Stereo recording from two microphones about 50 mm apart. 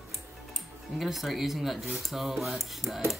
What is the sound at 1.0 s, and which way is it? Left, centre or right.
Rub, centre.